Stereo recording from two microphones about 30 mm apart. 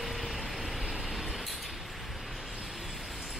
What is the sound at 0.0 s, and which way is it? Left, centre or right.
Vehicle, centre.